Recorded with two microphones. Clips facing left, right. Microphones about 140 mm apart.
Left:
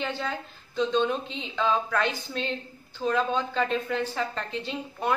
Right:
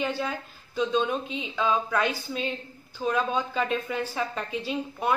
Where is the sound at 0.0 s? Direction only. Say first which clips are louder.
Right 2 dB; 10° right (ahead or behind).